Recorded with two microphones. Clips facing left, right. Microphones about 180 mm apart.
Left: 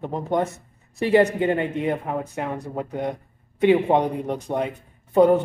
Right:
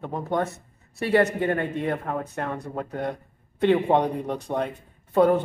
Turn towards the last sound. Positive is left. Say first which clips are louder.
# left 3 dB
turn(degrees=10)  # may be behind; listen again after turning